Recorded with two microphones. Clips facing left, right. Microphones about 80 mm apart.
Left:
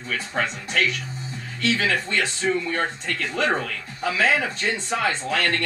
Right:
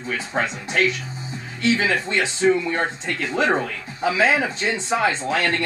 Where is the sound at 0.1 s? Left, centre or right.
Centre.